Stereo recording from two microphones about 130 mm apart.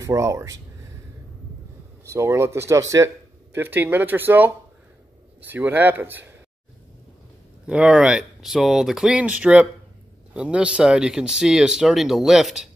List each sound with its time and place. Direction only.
0.0 s speech: 25° right (ahead or behind)
2.0 s speech: 20° right (ahead or behind)
7.6 s speech: 5° right (ahead or behind)